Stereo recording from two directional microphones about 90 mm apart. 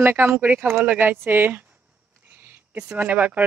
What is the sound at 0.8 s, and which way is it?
Speech, 15° right (ahead or behind).